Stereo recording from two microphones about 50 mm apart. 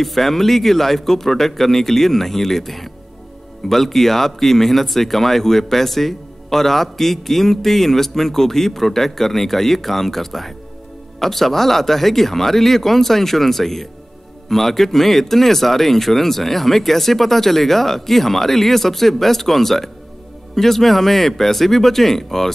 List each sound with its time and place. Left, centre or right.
0.0 s speech: centre